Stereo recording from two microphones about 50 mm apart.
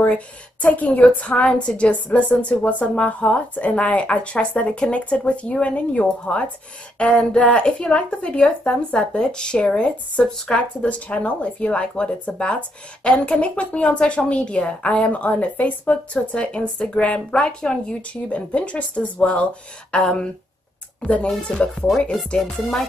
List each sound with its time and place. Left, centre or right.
0.0 s a woman's voice: left; by 10.5 s centre
10.5 s a woman's voice: left
21.3 s speech: centre
22.4 s music: centre